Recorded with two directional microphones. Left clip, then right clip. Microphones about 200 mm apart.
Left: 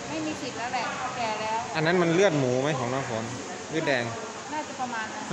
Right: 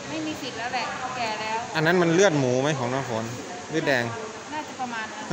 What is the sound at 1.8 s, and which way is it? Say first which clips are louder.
Speech: right 3 dB; 15° right (ahead or behind).